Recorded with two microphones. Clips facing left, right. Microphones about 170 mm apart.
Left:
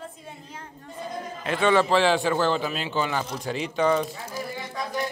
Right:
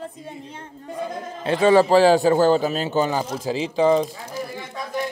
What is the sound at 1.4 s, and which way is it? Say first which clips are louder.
A man's voice: right 6 dB; 30° right (ahead or behind).